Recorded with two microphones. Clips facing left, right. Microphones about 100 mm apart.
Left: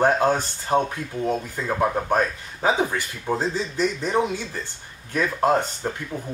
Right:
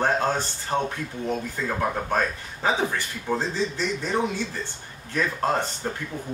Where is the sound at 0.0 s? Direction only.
15° left (ahead or behind).